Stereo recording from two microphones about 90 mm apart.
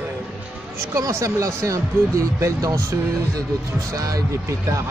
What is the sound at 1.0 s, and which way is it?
Speech, 35° right (ahead or behind).